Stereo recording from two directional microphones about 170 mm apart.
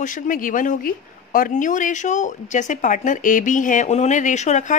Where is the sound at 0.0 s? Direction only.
50° left (ahead or behind).